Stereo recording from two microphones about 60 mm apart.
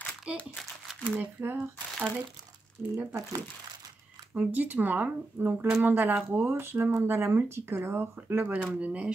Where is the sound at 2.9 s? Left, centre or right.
Right.